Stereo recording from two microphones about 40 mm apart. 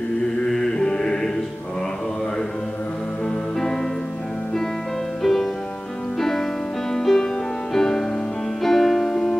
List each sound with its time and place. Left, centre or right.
0.7 s music: centre
5.2 s music: centre
6.9 s music: centre